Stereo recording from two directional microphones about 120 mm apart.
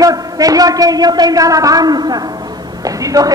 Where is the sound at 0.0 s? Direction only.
30° right (ahead or behind).